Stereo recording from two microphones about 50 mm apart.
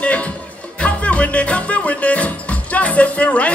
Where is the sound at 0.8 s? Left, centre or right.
Left.